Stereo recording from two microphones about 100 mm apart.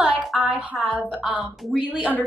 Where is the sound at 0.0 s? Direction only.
5° right (ahead or behind).